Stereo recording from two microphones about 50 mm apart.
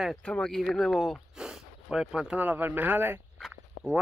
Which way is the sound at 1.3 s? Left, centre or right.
Centre.